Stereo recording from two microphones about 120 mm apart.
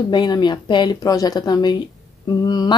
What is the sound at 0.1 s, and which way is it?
Speech, 40° left (ahead or behind).